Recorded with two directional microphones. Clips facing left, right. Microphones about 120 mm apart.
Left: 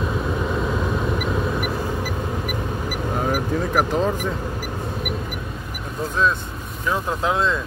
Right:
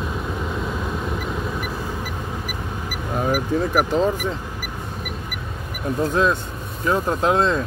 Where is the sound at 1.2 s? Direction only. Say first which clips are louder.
Left 4 dB; 70° left (ahead or behind).